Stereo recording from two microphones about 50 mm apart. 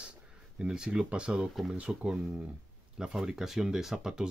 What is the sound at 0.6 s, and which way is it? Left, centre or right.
Speech, centre.